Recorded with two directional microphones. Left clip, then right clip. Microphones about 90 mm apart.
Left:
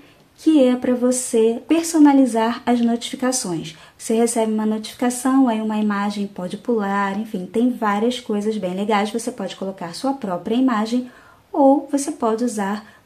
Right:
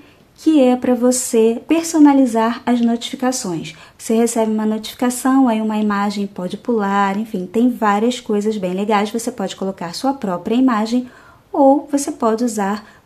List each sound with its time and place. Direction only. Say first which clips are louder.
0.4 s a woman's voice: right 2 dB; 30° right (ahead or behind)
9.5 s a woman's voice: right 4 dB; 50° right (ahead or behind)